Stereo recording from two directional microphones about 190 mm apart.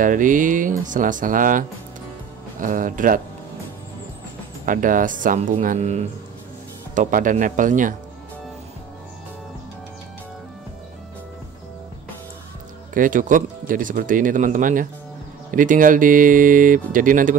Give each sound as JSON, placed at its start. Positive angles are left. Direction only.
{"t": 0.0, "sound": "speech", "side_deg": -45}
{"t": 4.6, "sound": "speech", "side_deg": -45}
{"t": 12.9, "sound": "speech", "side_deg": -45}